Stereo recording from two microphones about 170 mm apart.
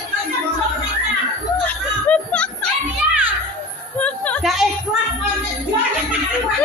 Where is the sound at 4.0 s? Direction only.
10° left (ahead or behind).